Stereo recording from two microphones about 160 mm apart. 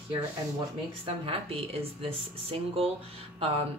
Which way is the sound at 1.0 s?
35° right (ahead or behind).